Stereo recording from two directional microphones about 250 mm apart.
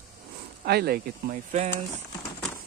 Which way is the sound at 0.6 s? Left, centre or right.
Right.